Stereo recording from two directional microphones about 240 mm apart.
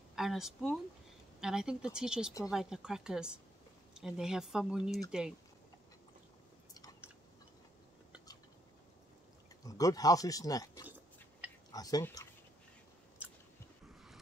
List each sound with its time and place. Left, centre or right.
0.1 s speech: centre
9.7 s speech: centre